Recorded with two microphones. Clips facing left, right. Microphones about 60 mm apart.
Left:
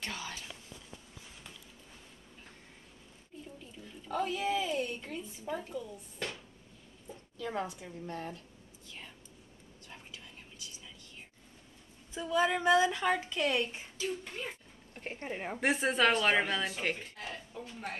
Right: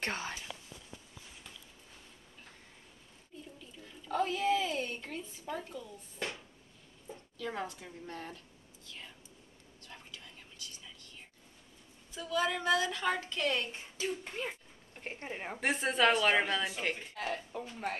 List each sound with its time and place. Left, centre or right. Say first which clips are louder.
0.0 s speech: right 4 dB; right
3.8 s a sound: right 1 dB; centre
5.4 s a woman's voice: left 4 dB; centre
6.1 s a sound: right 1 dB; centre
7.8 s a woman's voice: left 3 dB; centre
8.8 s whispering: even; centre
12.1 s a woman's voice: left 3 dB; left
13.9 s a woman's voice: right 1 dB; centre
17.2 s speech: right 6 dB; right